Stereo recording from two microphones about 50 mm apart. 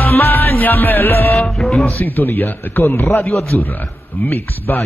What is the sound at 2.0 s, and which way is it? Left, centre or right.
A man's voice, left.